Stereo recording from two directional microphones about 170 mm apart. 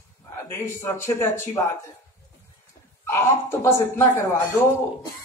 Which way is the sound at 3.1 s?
15° left (ahead or behind).